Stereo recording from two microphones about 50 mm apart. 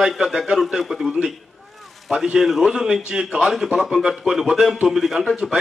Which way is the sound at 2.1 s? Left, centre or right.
Centre.